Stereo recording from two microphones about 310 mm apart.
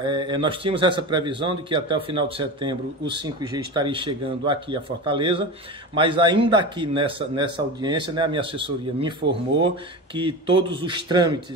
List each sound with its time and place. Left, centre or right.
0.0 s a man's voice: centre
9.2 s speech: right
10.1 s a man's voice: centre